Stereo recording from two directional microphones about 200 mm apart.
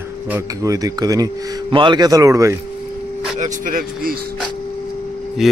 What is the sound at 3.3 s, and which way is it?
Speech, 40° right (ahead or behind).